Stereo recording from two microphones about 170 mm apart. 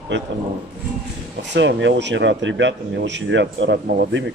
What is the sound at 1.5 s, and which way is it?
Speech, 90° right.